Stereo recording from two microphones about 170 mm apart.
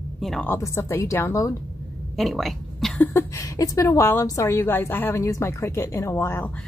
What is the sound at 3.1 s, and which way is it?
Speech, 20° left (ahead or behind).